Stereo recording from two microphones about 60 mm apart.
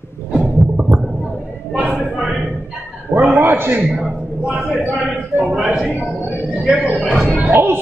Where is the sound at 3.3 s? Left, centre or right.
Right.